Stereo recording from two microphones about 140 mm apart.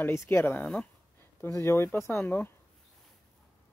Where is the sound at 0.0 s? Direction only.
15° left (ahead or behind).